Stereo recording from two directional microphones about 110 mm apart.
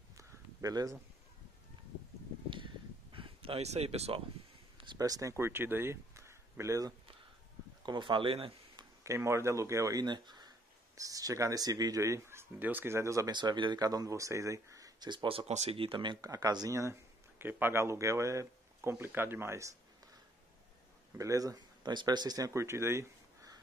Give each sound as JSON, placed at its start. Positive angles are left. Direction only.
{"t": 0.1, "sound": "a sound", "side_deg": -30}
{"t": 2.5, "sound": "a sound", "side_deg": -50}
{"t": 4.9, "sound": "speech", "side_deg": -35}
{"t": 7.8, "sound": "speech", "side_deg": -45}
{"t": 9.0, "sound": "speech", "side_deg": -25}
{"t": 13.3, "sound": "speech", "side_deg": -45}
{"t": 15.8, "sound": "speech", "side_deg": -50}
{"t": 16.2, "sound": "speech", "side_deg": -35}
{"t": 21.2, "sound": "speech", "side_deg": -30}
{"t": 22.5, "sound": "speech", "side_deg": -25}